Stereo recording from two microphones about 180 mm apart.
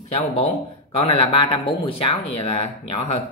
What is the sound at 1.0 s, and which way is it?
A woman's voice, 30° left (ahead or behind).